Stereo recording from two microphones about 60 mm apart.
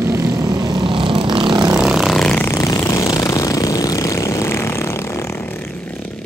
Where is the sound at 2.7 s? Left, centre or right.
Left.